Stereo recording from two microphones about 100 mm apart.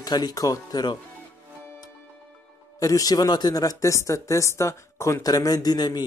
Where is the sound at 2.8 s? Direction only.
35° left (ahead or behind).